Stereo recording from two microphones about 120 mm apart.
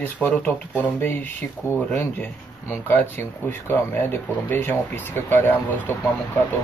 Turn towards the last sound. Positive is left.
turn(degrees=15)  # may be behind; listen again after turning